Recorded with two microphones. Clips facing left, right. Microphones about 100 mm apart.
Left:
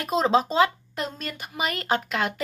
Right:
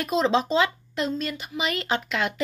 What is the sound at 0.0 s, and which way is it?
Speech, 40° left (ahead or behind).